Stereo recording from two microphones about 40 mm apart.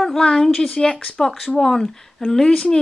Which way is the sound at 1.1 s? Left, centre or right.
Centre.